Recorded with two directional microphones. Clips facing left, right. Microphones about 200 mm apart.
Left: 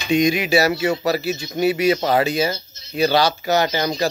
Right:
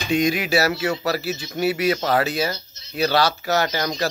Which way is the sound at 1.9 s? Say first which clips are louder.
Left 3 dB; 15° left (ahead or behind).